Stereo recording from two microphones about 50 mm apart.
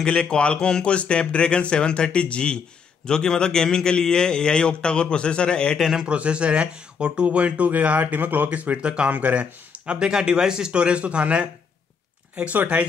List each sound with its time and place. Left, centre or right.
0.0 s a man's voice: centre
5.8 s speech: centre
6.0 s speech: right